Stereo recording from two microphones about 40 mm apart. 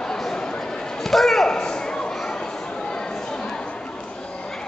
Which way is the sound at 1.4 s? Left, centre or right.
Centre.